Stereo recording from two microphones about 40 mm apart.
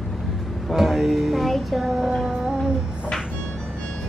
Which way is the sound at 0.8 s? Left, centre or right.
Centre.